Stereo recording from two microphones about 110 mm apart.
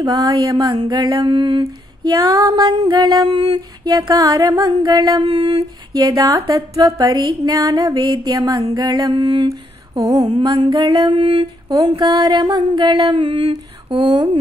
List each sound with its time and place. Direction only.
0.0 s music: 35° right (ahead or behind)
7.2 s music: 40° right (ahead or behind)
9.5 s mantra: 30° right (ahead or behind); by 12.1 s 55° right (ahead or behind)
12.1 s mantra: 40° right (ahead or behind); by 13.9 s 60° right (ahead or behind)
13.9 s music: 40° right (ahead or behind)